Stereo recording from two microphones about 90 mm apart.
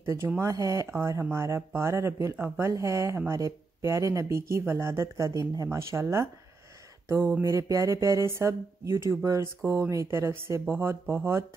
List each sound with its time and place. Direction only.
0.0 s speech: 30° right (ahead or behind)
2.3 s speech: 20° right (ahead or behind)
2.7 s speech: 35° right (ahead or behind)
10.6 s speech: 20° right (ahead or behind)